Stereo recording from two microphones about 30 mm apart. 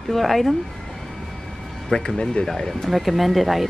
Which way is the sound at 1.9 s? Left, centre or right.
Left.